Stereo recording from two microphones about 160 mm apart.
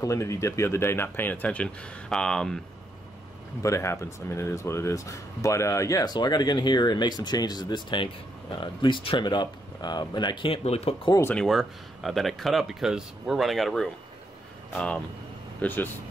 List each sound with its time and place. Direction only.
0.0 s speech: 20° left (ahead or behind); by 2.6 s 5° left (ahead or behind)
3.6 s speech: 20° left (ahead or behind); by 11.0 s 40° left (ahead or behind)
11.2 s speech: centre (ahead or behind)
15.6 s speech: 10° left (ahead or behind)